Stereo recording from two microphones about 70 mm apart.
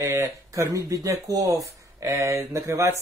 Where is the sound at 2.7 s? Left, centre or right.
Right.